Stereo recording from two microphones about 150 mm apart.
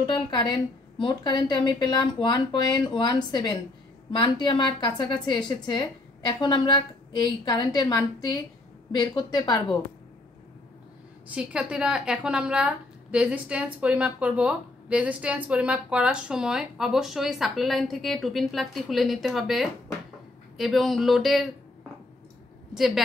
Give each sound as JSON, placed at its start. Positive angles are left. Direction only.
{"t": 0.1, "sound": "a woman's voice", "side_deg": 30}
{"t": 11.2, "sound": "speech", "side_deg": -5}
{"t": 22.8, "sound": "speech", "side_deg": 0}